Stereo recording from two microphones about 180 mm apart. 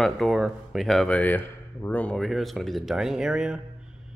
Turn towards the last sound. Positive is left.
turn(degrees=-5)  # may be behind; listen again after turning